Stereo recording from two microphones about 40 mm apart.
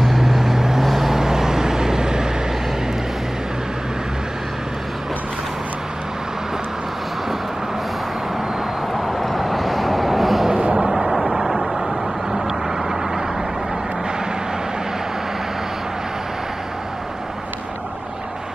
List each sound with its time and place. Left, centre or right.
0.0 s vehicle: centre
8.9 s vehicle: centre
10.5 s a sound: right
11.3 s vehicle: centre